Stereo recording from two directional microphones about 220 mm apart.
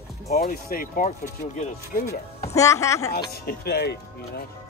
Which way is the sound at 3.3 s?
45° left (ahead or behind).